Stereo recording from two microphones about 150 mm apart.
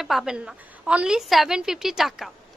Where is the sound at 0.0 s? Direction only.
Centre (ahead or behind).